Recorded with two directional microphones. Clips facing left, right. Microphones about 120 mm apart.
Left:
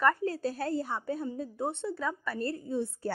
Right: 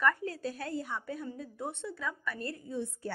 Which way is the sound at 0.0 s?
35° left (ahead or behind).